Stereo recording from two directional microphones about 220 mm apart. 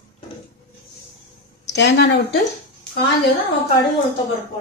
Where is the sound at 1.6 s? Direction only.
55° left (ahead or behind).